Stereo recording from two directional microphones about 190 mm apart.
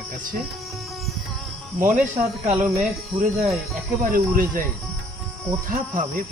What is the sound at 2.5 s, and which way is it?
Speech, 5° right (ahead or behind).